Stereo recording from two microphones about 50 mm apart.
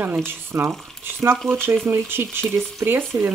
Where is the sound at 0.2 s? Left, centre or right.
Right.